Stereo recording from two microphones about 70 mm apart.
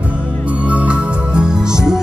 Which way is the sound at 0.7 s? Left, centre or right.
Centre.